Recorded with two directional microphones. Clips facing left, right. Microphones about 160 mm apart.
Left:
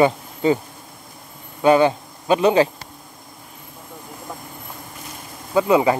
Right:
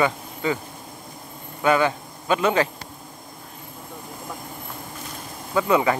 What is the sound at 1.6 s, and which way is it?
Speech, 25° left (ahead or behind).